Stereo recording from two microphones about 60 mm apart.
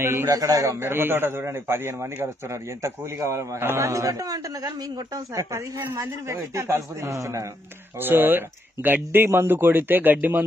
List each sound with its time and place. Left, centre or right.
0.0 s a man's voice: right
0.3 s a man's voice: right
0.7 s a man's voice: right
3.8 s a woman's voice: right
5.9 s a man's voice: right
8.0 s speech: right